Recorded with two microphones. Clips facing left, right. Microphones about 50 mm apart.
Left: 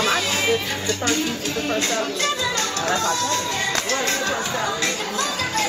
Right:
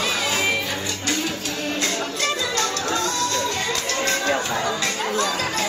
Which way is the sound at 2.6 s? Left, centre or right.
Centre.